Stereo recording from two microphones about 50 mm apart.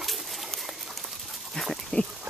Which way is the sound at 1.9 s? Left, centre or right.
Left.